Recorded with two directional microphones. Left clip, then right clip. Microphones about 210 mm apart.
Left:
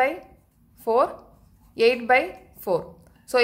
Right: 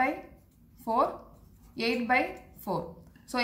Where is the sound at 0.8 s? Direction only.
55° left (ahead or behind).